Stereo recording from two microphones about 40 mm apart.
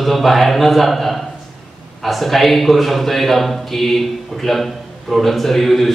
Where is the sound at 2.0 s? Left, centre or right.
Centre.